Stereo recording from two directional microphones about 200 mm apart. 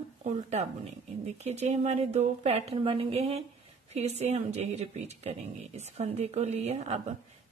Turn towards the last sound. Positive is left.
turn(degrees=-35)  # may be behind; listen again after turning